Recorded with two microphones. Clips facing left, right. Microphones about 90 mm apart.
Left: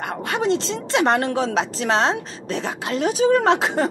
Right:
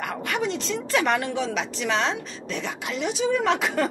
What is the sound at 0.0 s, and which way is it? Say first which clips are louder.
A woman's voice: left 4 dB; 30° left (ahead or behind).